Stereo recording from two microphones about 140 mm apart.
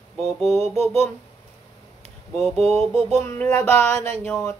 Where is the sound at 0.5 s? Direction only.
50° right (ahead or behind).